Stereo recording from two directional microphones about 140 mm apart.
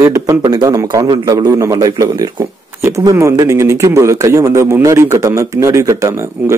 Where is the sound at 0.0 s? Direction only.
20° right (ahead or behind).